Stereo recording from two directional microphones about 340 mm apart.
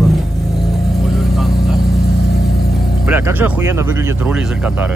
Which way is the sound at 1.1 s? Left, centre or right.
Centre.